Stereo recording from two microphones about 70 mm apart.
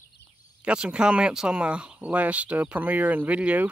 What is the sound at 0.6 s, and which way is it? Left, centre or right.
Speech, centre.